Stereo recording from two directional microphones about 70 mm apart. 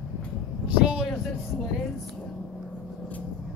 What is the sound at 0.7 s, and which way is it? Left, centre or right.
Vehicle, centre.